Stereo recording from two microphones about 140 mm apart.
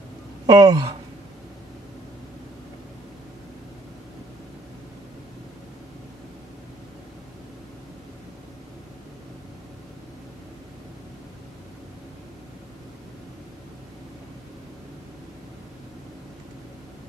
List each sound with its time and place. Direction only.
0.5 s speech: 30° right (ahead or behind)